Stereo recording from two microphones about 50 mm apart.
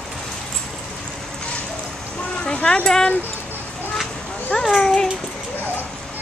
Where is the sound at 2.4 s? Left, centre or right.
Centre.